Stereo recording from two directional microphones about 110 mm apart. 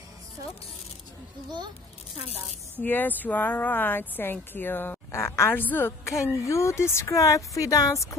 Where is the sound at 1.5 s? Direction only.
40° right (ahead or behind).